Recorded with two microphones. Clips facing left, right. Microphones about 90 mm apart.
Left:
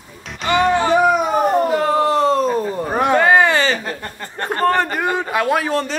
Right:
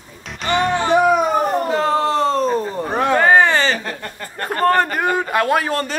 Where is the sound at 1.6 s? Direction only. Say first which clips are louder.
Left 1 dB; 30° right (ahead or behind).